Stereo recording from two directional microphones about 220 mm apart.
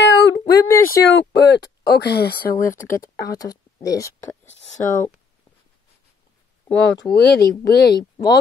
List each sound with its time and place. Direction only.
0.0 s a sound: 55° left (ahead or behind)
0.4 s a sound: 15° left (ahead or behind)
1.1 s speech: 50° left (ahead or behind)
2.6 s speech: 15° left (ahead or behind)
4.6 s speech: 35° left (ahead or behind)
6.7 s speech: 55° left (ahead or behind)